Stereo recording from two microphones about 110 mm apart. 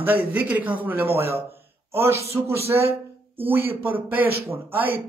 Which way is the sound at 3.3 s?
20° right (ahead or behind).